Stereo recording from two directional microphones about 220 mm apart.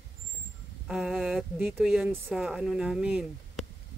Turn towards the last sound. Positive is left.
turn(degrees=-5)  # may be behind; listen again after turning